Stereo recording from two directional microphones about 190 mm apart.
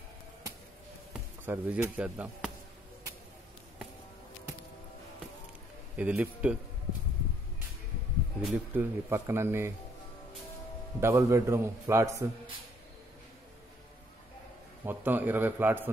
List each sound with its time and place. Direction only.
1.4 s speech: 10° right (ahead or behind)
5.9 s speech: 10° right (ahead or behind)
8.4 s speech: 5° right (ahead or behind)
11.0 s speech: 15° right (ahead or behind)
14.9 s speech: 10° right (ahead or behind)